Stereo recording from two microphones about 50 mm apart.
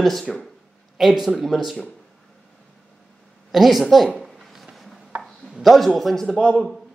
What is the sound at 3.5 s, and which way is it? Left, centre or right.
Speech, centre.